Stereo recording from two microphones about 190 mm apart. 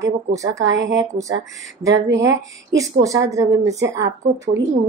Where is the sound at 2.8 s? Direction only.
15° right (ahead or behind).